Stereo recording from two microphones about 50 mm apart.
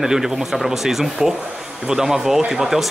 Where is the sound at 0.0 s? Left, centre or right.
Centre.